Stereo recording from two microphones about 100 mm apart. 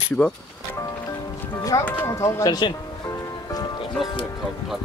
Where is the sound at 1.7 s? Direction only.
30° left (ahead or behind).